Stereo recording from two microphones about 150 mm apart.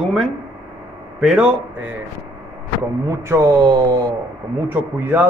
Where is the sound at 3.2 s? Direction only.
25° right (ahead or behind).